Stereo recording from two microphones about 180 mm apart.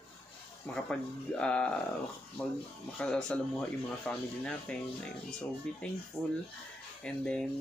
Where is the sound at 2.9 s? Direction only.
5° left (ahead or behind).